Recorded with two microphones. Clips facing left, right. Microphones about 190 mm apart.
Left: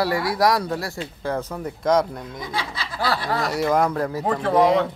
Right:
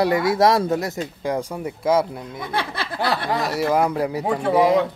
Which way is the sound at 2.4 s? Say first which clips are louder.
Right 4 dB; 60° right (ahead or behind).